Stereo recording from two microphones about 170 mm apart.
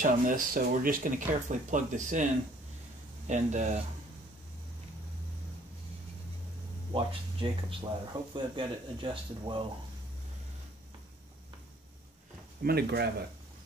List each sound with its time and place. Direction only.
0.0 s speech: 55° right (ahead or behind)
3.3 s speech: 45° right (ahead or behind)
6.9 s speech: 30° right (ahead or behind)
12.6 s speech: 70° right (ahead or behind)